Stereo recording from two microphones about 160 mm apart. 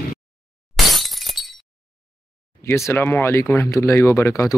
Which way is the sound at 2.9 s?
15° left (ahead or behind).